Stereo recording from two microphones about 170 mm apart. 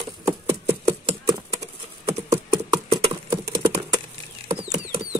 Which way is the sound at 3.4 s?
20° right (ahead or behind).